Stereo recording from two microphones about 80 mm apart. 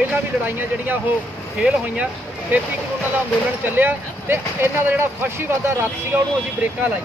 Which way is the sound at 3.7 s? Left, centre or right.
Right.